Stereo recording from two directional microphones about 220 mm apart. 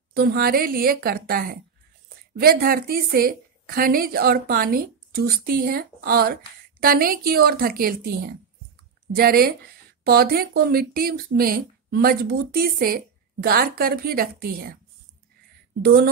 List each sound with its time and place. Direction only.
0.1 s a woman's voice: 45° right (ahead or behind)
9.1 s speech: 45° right (ahead or behind)
15.8 s speech: 45° right (ahead or behind)